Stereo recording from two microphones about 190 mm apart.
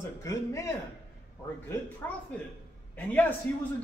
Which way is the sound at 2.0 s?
10° left (ahead or behind).